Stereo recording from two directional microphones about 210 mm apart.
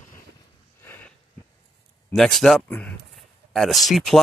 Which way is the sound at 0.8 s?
10° left (ahead or behind).